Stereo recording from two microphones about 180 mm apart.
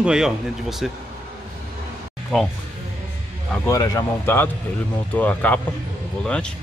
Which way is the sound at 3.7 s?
20° left (ahead or behind).